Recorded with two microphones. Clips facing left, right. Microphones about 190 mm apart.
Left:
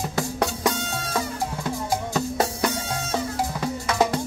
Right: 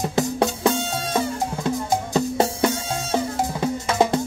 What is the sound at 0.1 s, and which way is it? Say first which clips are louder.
Music: right 4 dB; 25° right (ahead or behind).